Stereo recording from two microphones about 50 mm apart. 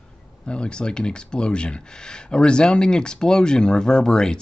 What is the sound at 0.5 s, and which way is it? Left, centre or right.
Speech, centre.